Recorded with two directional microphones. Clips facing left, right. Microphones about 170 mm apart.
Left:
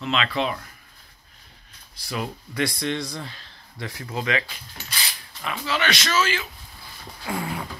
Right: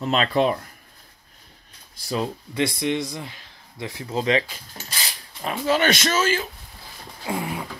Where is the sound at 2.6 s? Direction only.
20° right (ahead or behind); by 6.5 s 45° right (ahead or behind).